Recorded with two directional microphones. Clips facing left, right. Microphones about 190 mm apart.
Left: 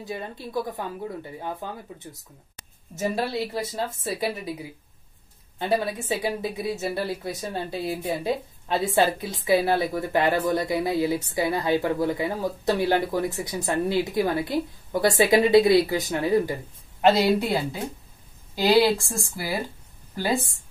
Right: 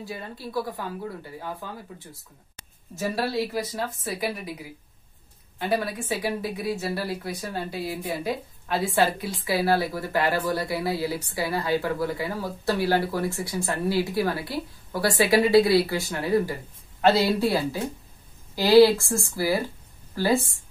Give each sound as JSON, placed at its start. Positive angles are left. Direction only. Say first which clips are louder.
{"t": 0.0, "sound": "a woman's voice", "louder": "left 2 dB", "side_deg": 20}
{"t": 3.0, "sound": "a woman's voice", "louder": "even", "side_deg": 25}
{"t": 5.6, "sound": "a woman's voice", "louder": "left 1 dB", "side_deg": 25}